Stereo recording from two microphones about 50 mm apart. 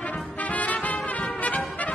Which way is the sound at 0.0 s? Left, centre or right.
Left.